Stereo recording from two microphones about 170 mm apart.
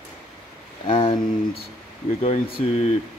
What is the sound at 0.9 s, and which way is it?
Speech, 30° left (ahead or behind).